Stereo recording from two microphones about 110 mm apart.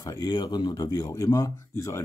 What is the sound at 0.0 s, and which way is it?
Speech, 35° left (ahead or behind).